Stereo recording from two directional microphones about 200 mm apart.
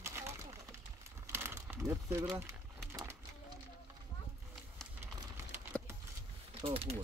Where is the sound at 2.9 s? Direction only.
15° right (ahead or behind).